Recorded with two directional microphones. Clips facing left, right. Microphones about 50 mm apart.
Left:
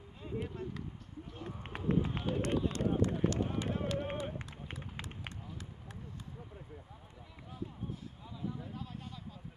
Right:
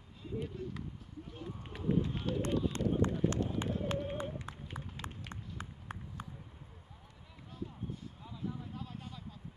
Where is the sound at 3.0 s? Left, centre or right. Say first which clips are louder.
Right 1 dB; right.